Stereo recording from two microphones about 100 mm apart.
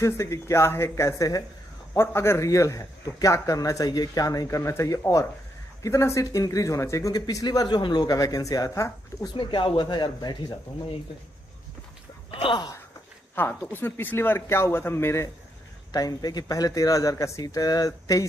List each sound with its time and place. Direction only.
0.0 s speech: 30° left (ahead or behind)
9.3 s speech: 50° left (ahead or behind)
12.3 s a sound: 60° left (ahead or behind)
13.3 s speech: 20° left (ahead or behind)
15.9 s speech: 40° left (ahead or behind)